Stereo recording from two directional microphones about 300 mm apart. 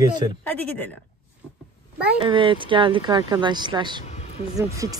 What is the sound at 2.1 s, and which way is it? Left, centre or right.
Speech, centre.